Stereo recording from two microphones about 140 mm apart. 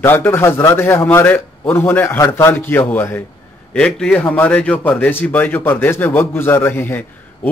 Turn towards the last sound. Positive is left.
turn(degrees=15)  # may be behind; listen again after turning